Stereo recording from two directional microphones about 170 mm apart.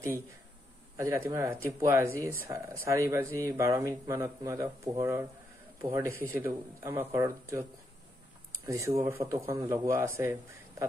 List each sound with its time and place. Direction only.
0.9 s speech: 15° right (ahead or behind)
5.8 s speech: 30° right (ahead or behind)
6.0 s speech: 15° right (ahead or behind)
8.6 s speech: 20° right (ahead or behind)